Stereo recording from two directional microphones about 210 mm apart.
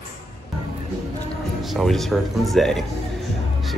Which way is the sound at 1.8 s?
Centre (ahead or behind).